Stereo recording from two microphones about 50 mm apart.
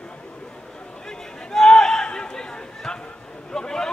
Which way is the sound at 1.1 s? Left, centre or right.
Centre.